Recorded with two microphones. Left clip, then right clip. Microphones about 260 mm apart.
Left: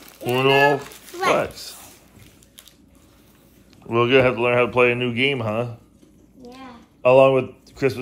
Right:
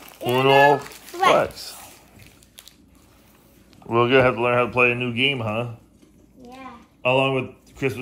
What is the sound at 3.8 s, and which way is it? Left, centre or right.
Speech, centre.